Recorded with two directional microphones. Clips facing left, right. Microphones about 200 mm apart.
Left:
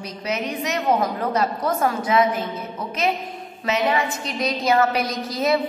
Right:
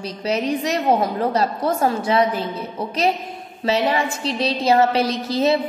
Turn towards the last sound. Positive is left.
turn(degrees=-25)  # may be behind; listen again after turning